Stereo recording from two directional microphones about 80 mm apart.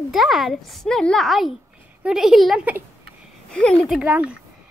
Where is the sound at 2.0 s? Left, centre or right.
Centre.